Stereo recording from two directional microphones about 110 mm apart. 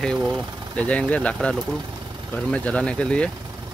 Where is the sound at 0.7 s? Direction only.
10° left (ahead or behind).